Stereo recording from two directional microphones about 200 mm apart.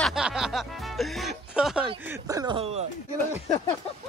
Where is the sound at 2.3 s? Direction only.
15° right (ahead or behind).